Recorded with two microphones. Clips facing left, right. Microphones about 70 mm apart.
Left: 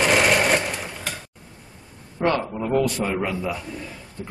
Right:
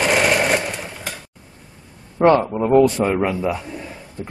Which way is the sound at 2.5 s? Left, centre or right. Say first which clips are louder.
Right 8 dB; right.